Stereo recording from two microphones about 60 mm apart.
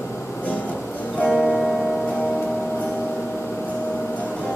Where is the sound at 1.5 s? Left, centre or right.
Centre.